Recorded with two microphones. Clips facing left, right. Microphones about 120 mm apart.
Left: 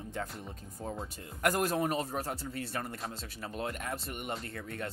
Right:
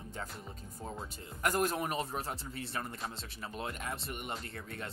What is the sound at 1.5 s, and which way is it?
Speech, 40° left (ahead or behind).